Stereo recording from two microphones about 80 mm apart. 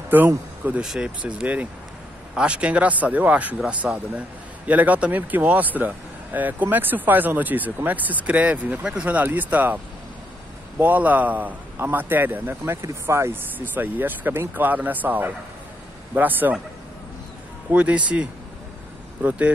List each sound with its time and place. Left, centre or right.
0.1 s speech: right
0.8 s speech: centre
10.8 s speech: right
17.7 s speech: centre